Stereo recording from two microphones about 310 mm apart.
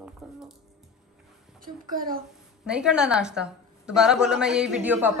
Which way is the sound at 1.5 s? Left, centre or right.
Right.